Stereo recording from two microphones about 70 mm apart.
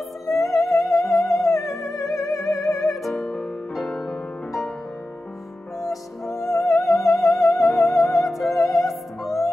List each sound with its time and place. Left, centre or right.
0.3 s music: left
1.1 s music: centre
1.4 s music: left
3.0 s music: centre
6.5 s music: centre
6.9 s music: left
7.7 s music: centre